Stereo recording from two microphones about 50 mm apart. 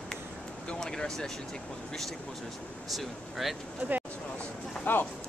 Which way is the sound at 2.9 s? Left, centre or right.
Centre.